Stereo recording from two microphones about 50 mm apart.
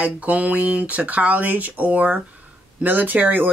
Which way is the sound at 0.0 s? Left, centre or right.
Right.